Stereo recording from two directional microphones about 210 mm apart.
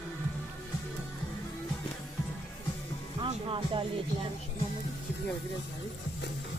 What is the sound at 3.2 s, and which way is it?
Speech, 25° right (ahead or behind).